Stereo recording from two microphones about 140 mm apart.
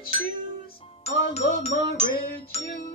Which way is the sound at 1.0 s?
50° left (ahead or behind).